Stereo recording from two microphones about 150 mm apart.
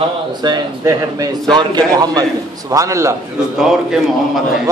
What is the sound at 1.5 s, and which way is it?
A man's voice, 30° right (ahead or behind).